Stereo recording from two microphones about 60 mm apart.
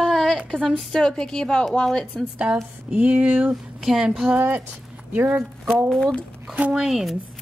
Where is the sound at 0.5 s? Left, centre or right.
Centre.